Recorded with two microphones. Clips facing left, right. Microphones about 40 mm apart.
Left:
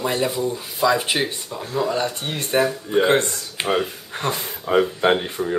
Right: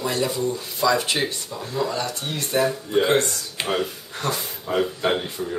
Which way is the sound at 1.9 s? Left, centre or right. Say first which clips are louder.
Left 3 dB; left.